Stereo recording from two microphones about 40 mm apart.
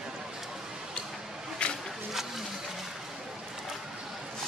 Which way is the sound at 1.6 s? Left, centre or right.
Left.